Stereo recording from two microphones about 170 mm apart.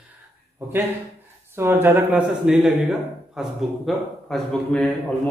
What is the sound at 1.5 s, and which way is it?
A man's voice, 15° right (ahead or behind).